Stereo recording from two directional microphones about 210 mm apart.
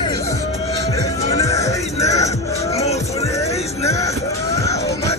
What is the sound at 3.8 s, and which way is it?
Music, 15° left (ahead or behind).